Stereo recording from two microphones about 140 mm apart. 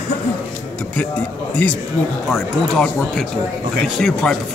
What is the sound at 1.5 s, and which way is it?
Speech, 10° left (ahead or behind).